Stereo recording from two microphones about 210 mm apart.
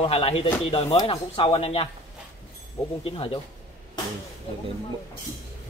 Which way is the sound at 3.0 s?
25° left (ahead or behind).